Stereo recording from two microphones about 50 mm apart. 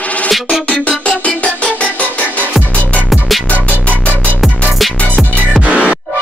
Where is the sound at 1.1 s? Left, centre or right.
Left.